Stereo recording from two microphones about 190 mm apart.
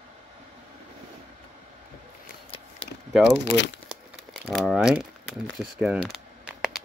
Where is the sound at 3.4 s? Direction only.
65° left (ahead or behind).